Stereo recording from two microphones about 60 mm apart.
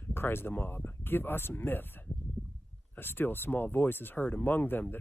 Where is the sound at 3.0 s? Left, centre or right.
Left.